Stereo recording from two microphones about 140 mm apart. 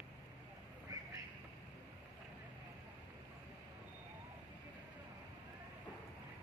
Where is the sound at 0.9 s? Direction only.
25° right (ahead or behind).